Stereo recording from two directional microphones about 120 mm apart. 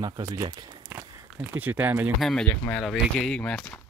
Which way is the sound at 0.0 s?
30° right (ahead or behind).